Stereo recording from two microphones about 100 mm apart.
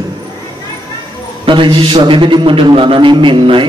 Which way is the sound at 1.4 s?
55° right (ahead or behind).